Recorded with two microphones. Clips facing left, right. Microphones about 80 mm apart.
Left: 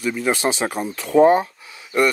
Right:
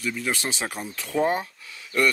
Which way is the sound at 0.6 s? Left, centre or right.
Left.